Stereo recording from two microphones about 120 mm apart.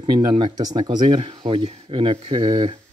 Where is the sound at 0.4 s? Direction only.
35° right (ahead or behind).